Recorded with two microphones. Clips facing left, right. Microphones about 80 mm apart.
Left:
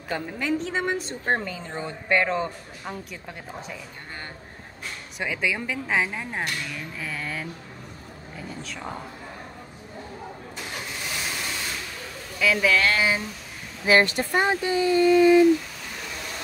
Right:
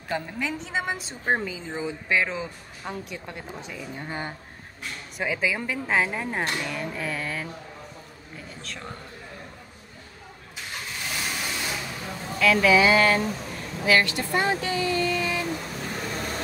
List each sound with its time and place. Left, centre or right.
0.1 s a woman's voice: centre
5.2 s a woman's voice: centre
8.6 s a woman's voice: centre
11.0 s vehicle: centre
12.4 s a woman's voice: centre
13.8 s speech: left